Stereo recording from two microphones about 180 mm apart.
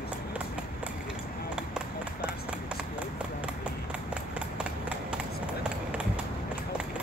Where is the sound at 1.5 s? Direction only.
5° right (ahead or behind).